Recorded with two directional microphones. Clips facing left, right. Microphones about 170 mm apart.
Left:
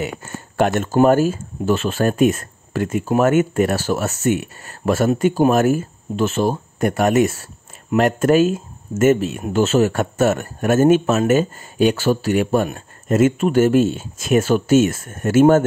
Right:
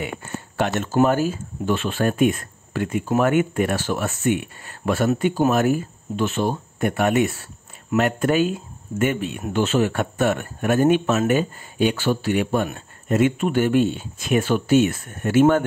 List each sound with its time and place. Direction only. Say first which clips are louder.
0.6 s speech: left 4 dB; 50° left (ahead or behind)